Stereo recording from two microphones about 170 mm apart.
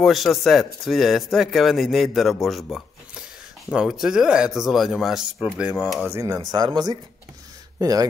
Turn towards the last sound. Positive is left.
turn(degrees=-20)  # may be behind; listen again after turning